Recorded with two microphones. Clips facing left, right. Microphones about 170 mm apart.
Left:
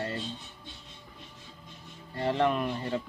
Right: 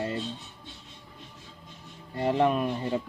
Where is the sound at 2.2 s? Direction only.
15° right (ahead or behind).